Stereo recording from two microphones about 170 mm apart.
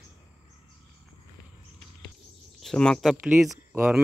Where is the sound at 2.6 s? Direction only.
5° left (ahead or behind).